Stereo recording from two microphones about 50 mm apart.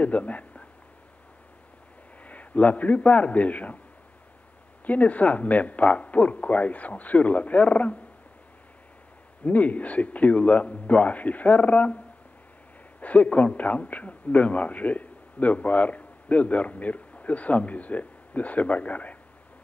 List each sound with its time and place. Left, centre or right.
0.0 s speech: left
2.2 s a man's voice: left
4.8 s a man's voice: left
9.4 s a man's voice: left
13.0 s a man's voice: left